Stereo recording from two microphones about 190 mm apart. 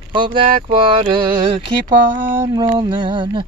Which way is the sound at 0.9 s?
25° right (ahead or behind).